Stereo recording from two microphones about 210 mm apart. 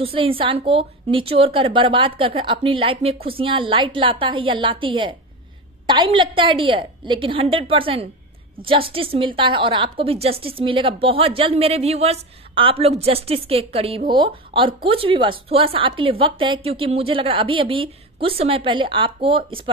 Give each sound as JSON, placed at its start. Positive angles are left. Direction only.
{"t": 0.0, "sound": "a woman's voice", "side_deg": -25}